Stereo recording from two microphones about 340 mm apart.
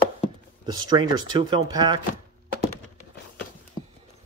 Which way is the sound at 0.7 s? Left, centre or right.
Centre.